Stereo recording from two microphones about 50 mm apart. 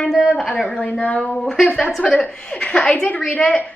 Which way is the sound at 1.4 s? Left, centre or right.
Centre.